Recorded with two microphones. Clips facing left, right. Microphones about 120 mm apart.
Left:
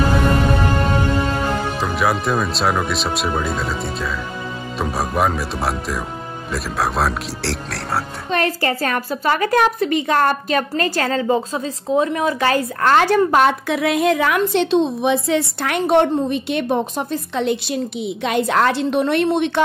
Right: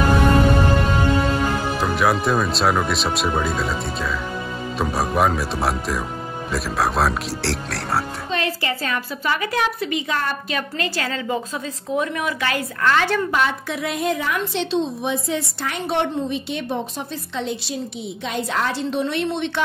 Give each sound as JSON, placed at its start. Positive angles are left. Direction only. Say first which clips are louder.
{"t": 1.8, "sound": "speech", "louder": "right 2 dB", "side_deg": 0}
{"t": 8.3, "sound": "a woman's voice", "louder": "left 8 dB", "side_deg": 50}